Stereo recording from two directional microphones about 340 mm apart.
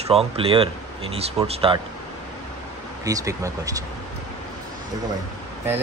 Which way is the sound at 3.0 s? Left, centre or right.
Centre.